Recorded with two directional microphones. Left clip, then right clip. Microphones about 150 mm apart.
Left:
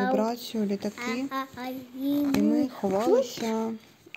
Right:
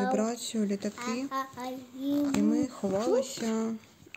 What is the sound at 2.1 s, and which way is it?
Speech, 35° left (ahead or behind).